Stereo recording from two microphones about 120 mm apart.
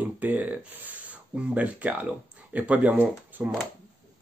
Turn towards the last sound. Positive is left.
turn(degrees=-15)  # may be behind; listen again after turning